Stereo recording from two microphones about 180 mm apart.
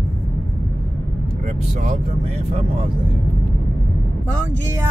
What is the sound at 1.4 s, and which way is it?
Speech, 40° right (ahead or behind).